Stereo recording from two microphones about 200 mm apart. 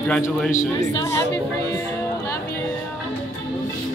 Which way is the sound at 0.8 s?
15° left (ahead or behind).